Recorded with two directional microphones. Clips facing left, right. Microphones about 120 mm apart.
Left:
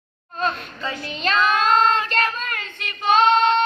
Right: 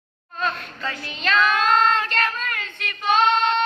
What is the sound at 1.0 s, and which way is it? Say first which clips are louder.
Child singing: even; 30° left (ahead or behind).